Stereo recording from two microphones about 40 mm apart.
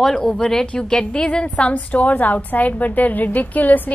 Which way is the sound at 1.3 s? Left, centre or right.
Left.